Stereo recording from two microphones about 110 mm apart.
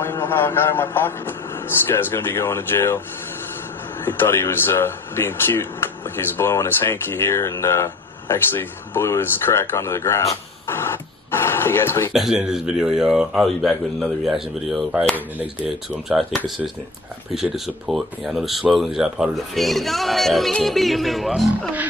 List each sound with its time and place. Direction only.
0.0 s a man's voice: 20° left (ahead or behind)
4.0 s speech: 20° left (ahead or behind)
12.1 s speech: 5° right (ahead or behind)